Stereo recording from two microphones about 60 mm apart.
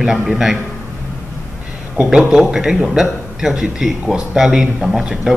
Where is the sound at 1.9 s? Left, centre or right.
Centre.